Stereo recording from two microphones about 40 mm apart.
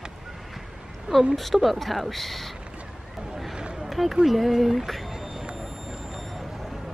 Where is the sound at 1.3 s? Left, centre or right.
Centre.